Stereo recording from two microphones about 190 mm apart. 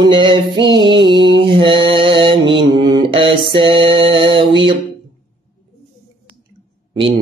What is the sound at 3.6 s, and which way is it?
Music, 30° right (ahead or behind).